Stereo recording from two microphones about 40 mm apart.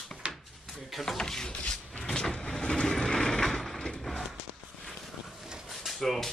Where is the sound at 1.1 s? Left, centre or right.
Centre.